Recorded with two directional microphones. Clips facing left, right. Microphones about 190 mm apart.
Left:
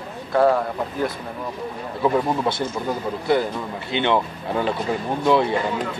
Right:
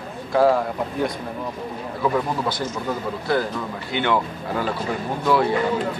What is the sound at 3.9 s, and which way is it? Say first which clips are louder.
Speech: left 1 dB; 20° left (ahead or behind).